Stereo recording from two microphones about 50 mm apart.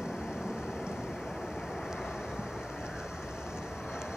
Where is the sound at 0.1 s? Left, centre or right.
Centre.